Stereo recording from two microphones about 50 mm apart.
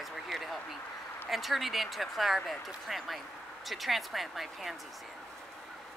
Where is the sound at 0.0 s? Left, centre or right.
Centre.